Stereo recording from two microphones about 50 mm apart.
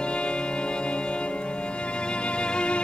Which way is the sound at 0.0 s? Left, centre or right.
Left.